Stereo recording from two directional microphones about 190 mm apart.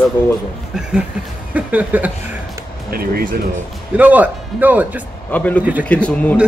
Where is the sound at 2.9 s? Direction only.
50° right (ahead or behind).